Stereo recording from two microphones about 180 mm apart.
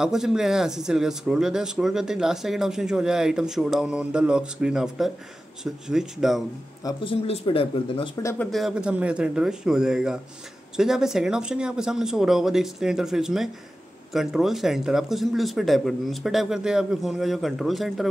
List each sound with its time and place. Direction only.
0.0 s speech: 5° right (ahead or behind)
6.8 s speech: 25° left (ahead or behind)
8.2 s speech: 15° left (ahead or behind)
8.5 s speech: centre (ahead or behind)